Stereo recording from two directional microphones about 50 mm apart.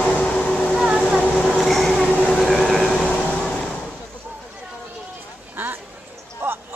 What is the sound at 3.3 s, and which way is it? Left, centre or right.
Vehicle, centre.